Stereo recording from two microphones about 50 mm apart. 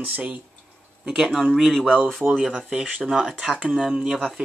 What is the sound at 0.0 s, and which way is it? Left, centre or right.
Speech, right.